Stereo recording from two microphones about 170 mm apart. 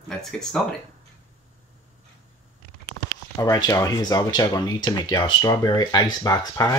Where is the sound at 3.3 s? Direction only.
20° left (ahead or behind).